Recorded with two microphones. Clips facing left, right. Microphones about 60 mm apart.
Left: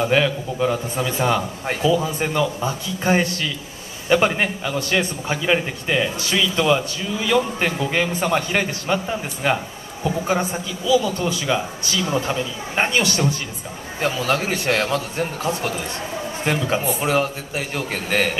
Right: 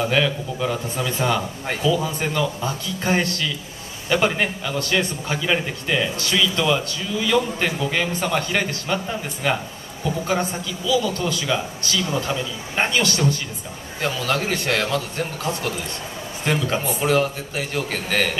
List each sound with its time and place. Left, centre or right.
0.0 s a man's voice: centre